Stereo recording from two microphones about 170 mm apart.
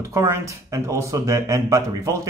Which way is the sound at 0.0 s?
15° right (ahead or behind).